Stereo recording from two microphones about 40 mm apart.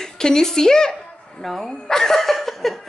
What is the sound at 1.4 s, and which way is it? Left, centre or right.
Speech, centre.